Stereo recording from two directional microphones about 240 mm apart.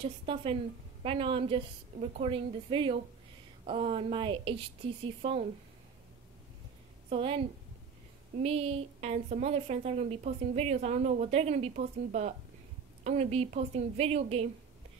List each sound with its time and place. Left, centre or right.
0.0 s a woman's voice: right
7.1 s a woman's voice: right